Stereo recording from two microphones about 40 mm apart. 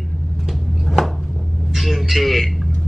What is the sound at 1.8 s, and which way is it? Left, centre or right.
Speech, centre.